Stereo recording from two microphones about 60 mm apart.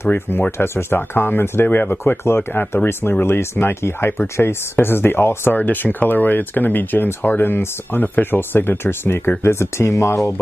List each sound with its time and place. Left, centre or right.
0.1 s speech: left
5.6 s speech: left